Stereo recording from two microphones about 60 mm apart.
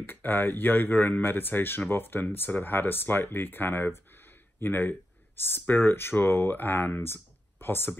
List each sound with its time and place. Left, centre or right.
0.0 s speech: left